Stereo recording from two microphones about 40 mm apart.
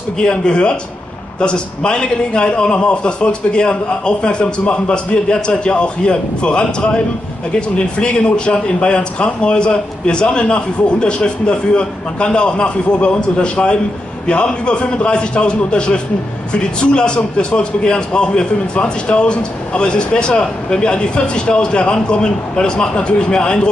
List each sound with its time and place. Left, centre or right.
0.2 s a man's voice: left